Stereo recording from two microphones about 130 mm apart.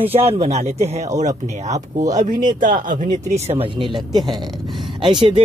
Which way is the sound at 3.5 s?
45° right (ahead or behind).